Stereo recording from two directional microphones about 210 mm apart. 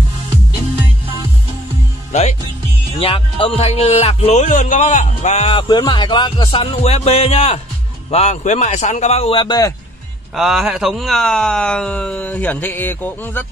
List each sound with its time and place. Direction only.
3.0 s speech: 25° left (ahead or behind)
10.3 s speech: centre (ahead or behind)